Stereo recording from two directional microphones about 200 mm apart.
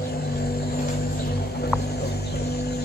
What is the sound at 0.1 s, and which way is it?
Vehicle, 50° left (ahead or behind).